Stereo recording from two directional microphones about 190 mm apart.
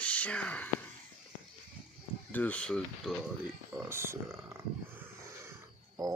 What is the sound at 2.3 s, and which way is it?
Speech, 10° left (ahead or behind).